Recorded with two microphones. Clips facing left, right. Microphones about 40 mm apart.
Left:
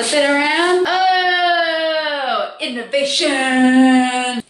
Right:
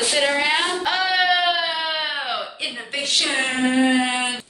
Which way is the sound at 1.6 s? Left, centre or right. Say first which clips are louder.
Left 7 dB; left.